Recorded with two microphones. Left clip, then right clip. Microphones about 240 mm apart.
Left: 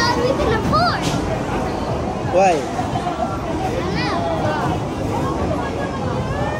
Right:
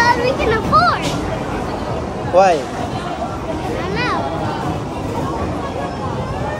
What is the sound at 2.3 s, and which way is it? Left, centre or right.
Speech, centre.